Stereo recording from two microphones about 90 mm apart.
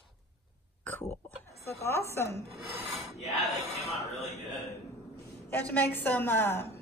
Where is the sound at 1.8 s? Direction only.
30° left (ahead or behind).